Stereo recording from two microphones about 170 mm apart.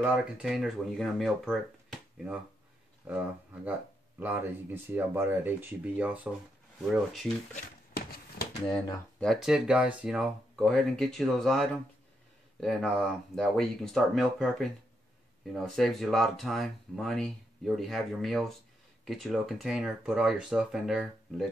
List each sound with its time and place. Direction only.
0.0 s speech: 5° right (ahead or behind)
6.8 s speech: centre (ahead or behind)
7.9 s a sound: 65° left (ahead or behind)
8.6 s speech: 25° left (ahead or behind)
9.2 s speech: centre (ahead or behind)